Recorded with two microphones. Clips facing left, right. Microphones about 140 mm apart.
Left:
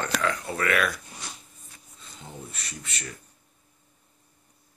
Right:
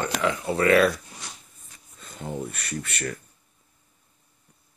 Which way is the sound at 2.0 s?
55° right (ahead or behind).